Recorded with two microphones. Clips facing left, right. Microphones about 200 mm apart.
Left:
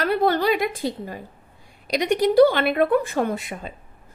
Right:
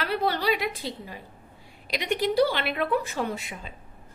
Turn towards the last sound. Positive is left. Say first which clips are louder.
# left 6 dB
turn(degrees=50)  # may be behind; listen again after turning